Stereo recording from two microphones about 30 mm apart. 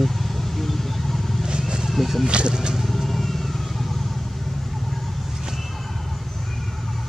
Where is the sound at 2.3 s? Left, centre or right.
Right.